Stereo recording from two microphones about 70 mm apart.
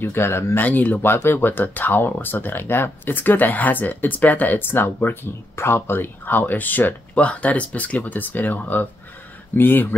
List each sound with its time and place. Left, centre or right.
0.0 s speech: left
0.6 s speech: left
1.0 s speech: left